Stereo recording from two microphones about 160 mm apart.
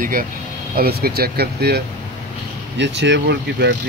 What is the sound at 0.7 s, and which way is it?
Speech, 70° right (ahead or behind).